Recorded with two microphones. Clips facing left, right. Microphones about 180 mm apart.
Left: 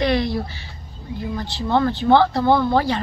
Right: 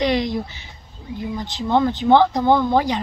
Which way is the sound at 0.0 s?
20° right (ahead or behind).